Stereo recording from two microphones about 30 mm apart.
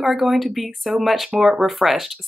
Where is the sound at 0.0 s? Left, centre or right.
Centre.